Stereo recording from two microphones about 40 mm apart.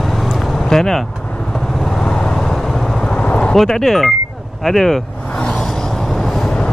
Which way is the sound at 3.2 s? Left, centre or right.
Left.